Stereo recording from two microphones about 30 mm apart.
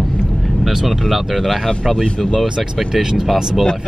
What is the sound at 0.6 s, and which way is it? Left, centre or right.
Speech, centre.